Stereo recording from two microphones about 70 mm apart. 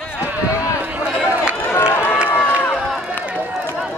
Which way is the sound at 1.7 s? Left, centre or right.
Left.